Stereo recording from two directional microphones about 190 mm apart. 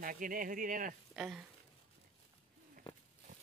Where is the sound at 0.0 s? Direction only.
45° right (ahead or behind).